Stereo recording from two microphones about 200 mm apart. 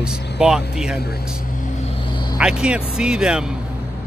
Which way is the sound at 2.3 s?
5° right (ahead or behind).